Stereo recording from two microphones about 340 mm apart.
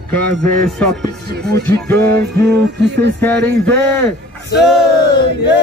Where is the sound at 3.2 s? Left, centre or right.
Centre.